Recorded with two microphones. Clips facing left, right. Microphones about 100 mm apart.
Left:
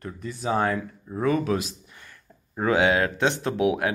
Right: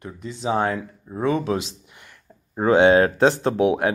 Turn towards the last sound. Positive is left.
turn(degrees=-30)  # may be behind; listen again after turning